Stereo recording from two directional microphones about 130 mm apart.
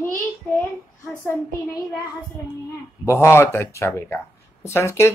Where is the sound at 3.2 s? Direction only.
20° left (ahead or behind).